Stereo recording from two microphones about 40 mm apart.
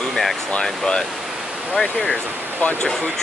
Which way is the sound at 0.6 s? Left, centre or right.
Centre.